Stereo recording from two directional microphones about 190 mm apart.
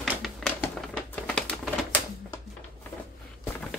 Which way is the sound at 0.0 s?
Centre (ahead or behind).